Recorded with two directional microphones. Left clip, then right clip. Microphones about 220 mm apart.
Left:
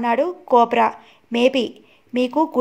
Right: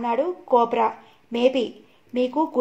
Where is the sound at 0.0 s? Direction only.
45° left (ahead or behind).